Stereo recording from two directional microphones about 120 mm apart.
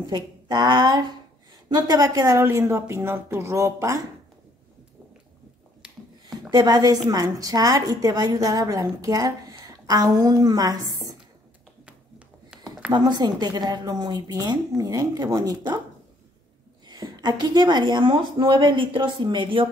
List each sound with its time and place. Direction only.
0.0 s a woman's voice: 35° right (ahead or behind)
6.5 s a woman's voice: 35° right (ahead or behind)
12.9 s a woman's voice: 35° right (ahead or behind)
16.8 s a woman's voice: 35° right (ahead or behind)